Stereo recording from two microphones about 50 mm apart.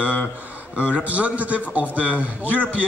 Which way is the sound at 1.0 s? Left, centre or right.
Right.